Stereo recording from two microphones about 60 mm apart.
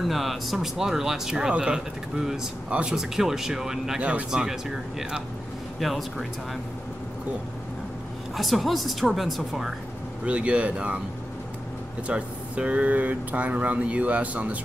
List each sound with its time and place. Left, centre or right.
0.0 s a woman's voice: centre
8.4 s a woman's voice: centre
10.2 s speech: right
12.1 s speech: centre